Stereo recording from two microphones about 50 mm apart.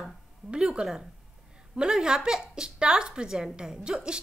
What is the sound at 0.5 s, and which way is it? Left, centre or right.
A woman's voice, centre.